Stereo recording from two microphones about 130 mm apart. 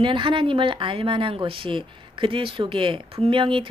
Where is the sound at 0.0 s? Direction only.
40° right (ahead or behind).